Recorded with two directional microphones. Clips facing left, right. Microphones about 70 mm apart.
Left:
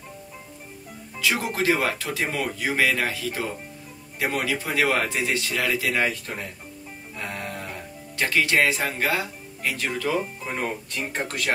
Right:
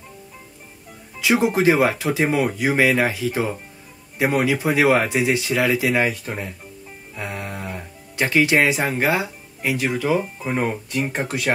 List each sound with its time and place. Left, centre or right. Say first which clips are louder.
1.2 s speech: right 7 dB; centre